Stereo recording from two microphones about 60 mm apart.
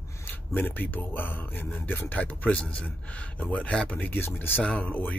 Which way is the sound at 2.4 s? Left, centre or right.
Centre.